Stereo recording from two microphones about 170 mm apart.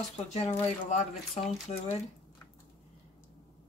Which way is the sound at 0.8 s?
40° left (ahead or behind).